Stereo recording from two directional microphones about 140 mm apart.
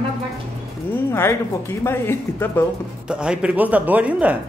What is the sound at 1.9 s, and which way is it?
Speech, 15° left (ahead or behind).